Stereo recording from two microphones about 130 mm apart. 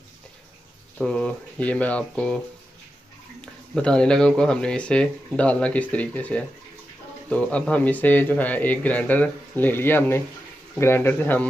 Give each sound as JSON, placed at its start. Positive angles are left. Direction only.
{"t": 0.9, "sound": "speech", "side_deg": 5}
{"t": 3.3, "sound": "speech", "side_deg": 5}